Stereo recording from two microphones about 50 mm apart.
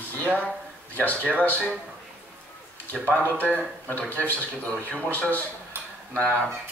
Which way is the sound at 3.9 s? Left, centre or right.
Left.